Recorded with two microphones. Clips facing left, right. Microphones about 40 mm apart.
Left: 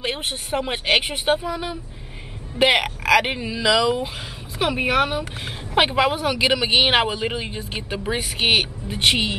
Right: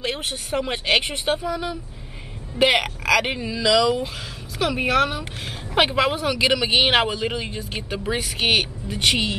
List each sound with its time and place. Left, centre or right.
0.0 s speech: centre
8.8 s a woman's voice: left